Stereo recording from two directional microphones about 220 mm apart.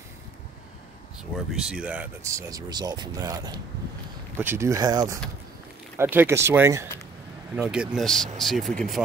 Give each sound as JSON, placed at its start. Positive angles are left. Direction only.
{"t": 1.5, "sound": "speech", "side_deg": -5}